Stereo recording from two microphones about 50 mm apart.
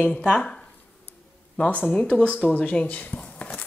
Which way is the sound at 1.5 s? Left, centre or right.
Left.